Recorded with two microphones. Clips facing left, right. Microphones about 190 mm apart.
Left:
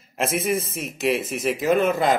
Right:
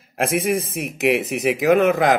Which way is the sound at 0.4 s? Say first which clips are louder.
Right 3 dB; 55° right (ahead or behind).